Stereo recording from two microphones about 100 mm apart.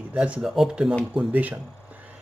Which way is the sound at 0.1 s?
10° right (ahead or behind).